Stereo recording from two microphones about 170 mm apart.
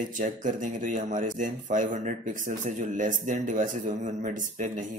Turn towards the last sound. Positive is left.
turn(degrees=-45)  # may be behind; listen again after turning